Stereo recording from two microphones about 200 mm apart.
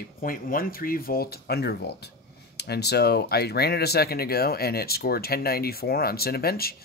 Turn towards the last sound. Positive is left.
turn(degrees=50)  # may be behind; listen again after turning